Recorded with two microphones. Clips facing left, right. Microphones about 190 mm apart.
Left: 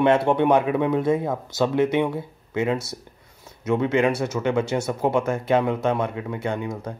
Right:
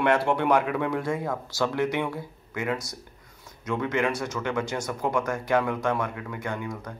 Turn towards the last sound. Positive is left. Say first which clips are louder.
# left 5 dB
turn(degrees=25)  # may be behind; listen again after turning